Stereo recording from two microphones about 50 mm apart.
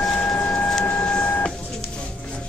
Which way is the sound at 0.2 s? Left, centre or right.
Left.